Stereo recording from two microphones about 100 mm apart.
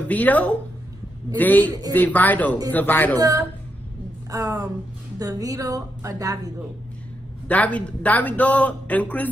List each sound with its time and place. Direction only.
0.1 s a man's voice: 15° left (ahead or behind)
3.2 s a woman's voice: 35° right (ahead or behind)
7.4 s a man's voice: 15° left (ahead or behind)